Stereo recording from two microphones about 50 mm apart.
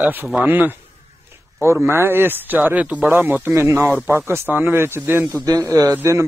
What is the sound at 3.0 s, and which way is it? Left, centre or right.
Speech, right.